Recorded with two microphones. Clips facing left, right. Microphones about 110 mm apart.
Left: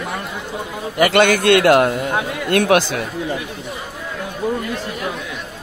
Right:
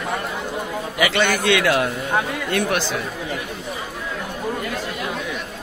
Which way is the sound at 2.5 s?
65° left (ahead or behind).